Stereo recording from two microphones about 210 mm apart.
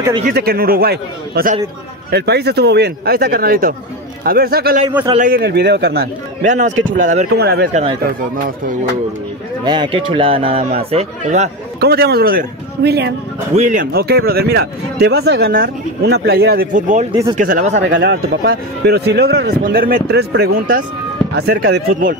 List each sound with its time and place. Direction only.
0.2 s speech: 45° right (ahead or behind)
6.4 s speech: 35° right (ahead or behind)
7.3 s speech: 50° right (ahead or behind)
7.7 s speech: 25° right (ahead or behind)
9.7 s speech: 25° right (ahead or behind)
11.8 s speech: 50° right (ahead or behind)
13.6 s speech: 40° right (ahead or behind)
17.1 s speech: 20° right (ahead or behind)
17.4 s speech: 35° right (ahead or behind)
17.8 s speech: 60° right (ahead or behind)